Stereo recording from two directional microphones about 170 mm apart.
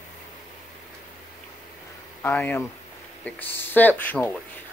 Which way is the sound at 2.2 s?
10° left (ahead or behind).